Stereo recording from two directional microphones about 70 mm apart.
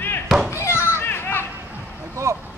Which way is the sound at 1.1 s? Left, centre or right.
Left.